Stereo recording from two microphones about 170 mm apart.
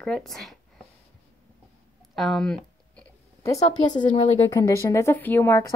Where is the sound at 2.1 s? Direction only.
Centre (ahead or behind).